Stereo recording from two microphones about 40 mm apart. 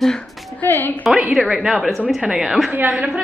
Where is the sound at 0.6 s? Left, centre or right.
Left.